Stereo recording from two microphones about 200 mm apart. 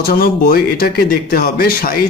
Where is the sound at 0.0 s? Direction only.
50° left (ahead or behind).